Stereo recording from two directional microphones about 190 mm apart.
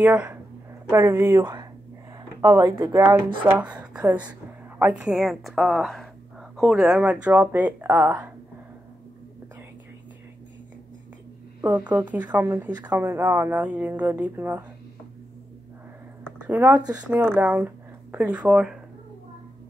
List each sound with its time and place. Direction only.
0.0 s a woman's voice: 5° right (ahead or behind)
0.8 s a woman's voice: 15° right (ahead or behind)
11.6 s a woman's voice: 10° right (ahead or behind)
16.4 s speech: 10° right (ahead or behind)